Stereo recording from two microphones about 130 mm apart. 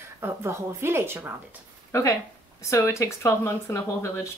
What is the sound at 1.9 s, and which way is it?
Speech, 25° left (ahead or behind).